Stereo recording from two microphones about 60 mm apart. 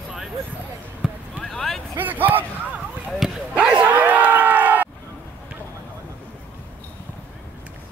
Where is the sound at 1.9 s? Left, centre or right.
Right.